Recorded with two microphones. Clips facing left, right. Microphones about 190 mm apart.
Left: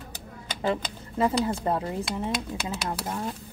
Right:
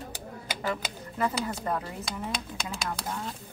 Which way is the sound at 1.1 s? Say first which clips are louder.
Left 6 dB; 25° left (ahead or behind).